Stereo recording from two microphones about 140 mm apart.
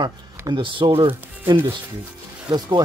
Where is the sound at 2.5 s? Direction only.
25° right (ahead or behind).